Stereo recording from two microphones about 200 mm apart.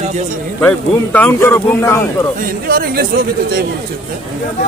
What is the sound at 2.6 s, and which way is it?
Speech, 45° right (ahead or behind).